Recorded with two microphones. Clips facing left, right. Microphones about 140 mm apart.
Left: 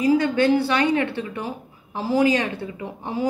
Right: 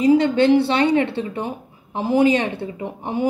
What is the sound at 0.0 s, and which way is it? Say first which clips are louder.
A woman's voice: right 3 dB; 25° right (ahead or behind).